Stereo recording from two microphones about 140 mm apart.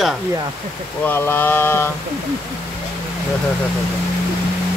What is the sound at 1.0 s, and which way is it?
Speech, 15° left (ahead or behind).